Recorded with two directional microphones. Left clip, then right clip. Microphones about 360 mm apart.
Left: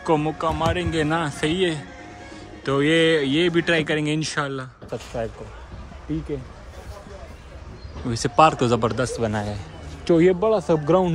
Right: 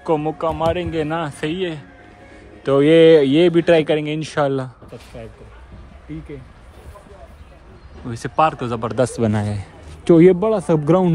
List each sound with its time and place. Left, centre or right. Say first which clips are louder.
0.0 s a man's voice: right 2 dB; centre
8.1 s a man's voice: left 1 dB; centre
8.9 s a man's voice: right 5 dB; centre
9.6 s a sound: left 1 dB; centre
10.6 s speech: right 3 dB; centre